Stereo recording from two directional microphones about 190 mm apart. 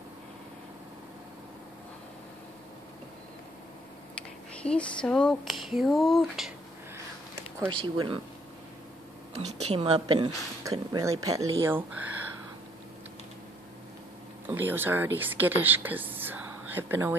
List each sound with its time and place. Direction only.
4.6 s speech: 5° left (ahead or behind)
7.6 s speech: 25° right (ahead or behind)
9.4 s a woman's voice: 35° right (ahead or behind)
10.6 s speech: 20° right (ahead or behind)
14.5 s speech: 10° right (ahead or behind)